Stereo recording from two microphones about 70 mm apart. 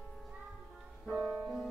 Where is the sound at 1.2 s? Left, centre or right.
Centre.